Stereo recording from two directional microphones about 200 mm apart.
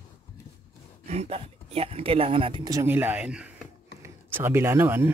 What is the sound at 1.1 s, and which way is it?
Speech, 30° right (ahead or behind).